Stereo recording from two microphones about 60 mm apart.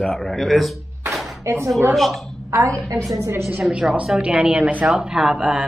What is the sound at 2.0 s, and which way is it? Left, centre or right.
Speech, centre.